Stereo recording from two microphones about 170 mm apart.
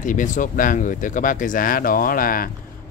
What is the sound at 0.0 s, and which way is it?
Speech, 50° left (ahead or behind).